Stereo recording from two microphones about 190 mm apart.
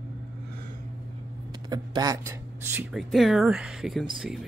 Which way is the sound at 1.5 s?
20° right (ahead or behind).